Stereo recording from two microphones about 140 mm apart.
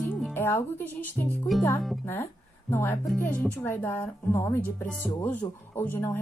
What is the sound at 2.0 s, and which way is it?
A woman's voice, 20° left (ahead or behind).